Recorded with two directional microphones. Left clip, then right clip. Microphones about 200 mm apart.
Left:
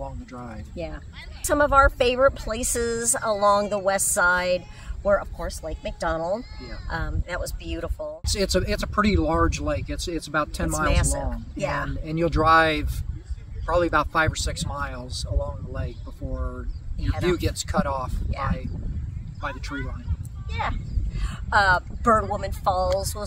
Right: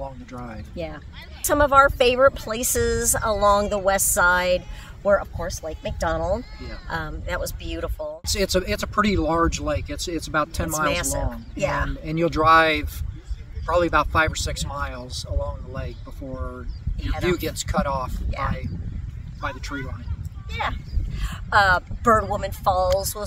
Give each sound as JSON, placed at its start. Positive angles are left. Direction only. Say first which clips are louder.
{"t": 0.0, "sound": "a sound", "louder": "right 2 dB", "side_deg": 5}
{"t": 0.7, "sound": "speech", "louder": "right 2 dB", "side_deg": -25}
{"t": 8.3, "sound": "speech", "louder": "right 1 dB", "side_deg": 0}
{"t": 11.0, "sound": "speech", "louder": "right 2 dB", "side_deg": -20}
{"t": 12.0, "sound": "speech", "louder": "right 2 dB", "side_deg": 0}
{"t": 19.4, "sound": "speech", "louder": "right 2 dB", "side_deg": 0}
{"t": 20.5, "sound": "speech", "louder": "right 2 dB", "side_deg": -25}